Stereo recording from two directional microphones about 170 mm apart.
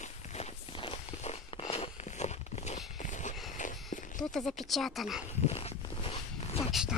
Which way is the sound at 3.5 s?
50° left (ahead or behind).